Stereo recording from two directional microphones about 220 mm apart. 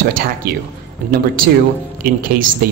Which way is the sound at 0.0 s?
40° right (ahead or behind).